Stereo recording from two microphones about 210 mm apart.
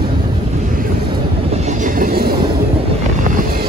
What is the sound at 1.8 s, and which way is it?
Train, 45° right (ahead or behind).